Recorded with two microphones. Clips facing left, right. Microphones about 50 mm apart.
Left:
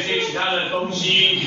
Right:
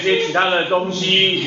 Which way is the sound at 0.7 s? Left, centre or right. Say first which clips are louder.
Right 5 dB; right.